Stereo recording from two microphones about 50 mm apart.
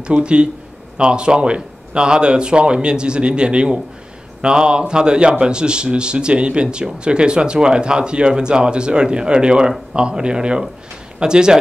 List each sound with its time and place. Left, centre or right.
0.0 s a man's voice: centre